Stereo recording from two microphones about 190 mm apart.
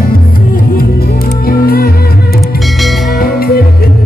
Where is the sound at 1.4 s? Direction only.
50° left (ahead or behind).